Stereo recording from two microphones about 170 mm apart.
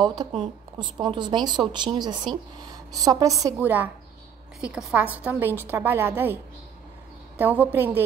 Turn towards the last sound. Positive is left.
turn(degrees=-10)  # may be behind; listen again after turning